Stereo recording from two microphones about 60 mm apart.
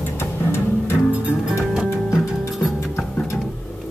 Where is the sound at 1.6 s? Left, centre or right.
Centre.